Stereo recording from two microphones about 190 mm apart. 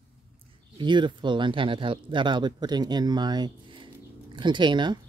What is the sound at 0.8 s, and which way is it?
Speech, 25° right (ahead or behind).